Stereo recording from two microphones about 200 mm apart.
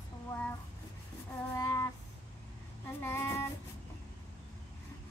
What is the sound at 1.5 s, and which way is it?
Music, 15° left (ahead or behind).